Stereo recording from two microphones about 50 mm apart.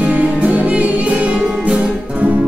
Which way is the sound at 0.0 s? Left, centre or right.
Right.